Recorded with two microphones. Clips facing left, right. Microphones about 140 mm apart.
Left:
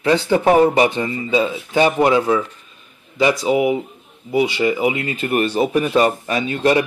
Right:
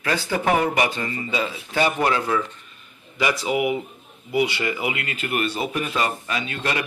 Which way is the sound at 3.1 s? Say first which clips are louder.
Left 6 dB; 30° left (ahead or behind).